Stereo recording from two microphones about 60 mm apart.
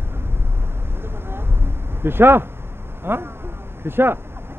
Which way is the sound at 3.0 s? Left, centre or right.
Right.